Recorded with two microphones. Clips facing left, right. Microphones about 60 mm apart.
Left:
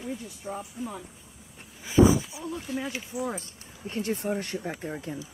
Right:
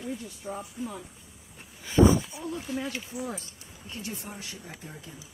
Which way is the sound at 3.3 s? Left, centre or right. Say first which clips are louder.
Left 3 dB; left.